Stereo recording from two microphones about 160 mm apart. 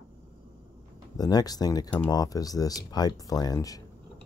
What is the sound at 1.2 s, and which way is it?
Speech, 25° left (ahead or behind).